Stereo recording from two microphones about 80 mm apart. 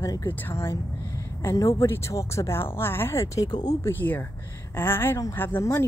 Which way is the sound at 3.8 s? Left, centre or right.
Left.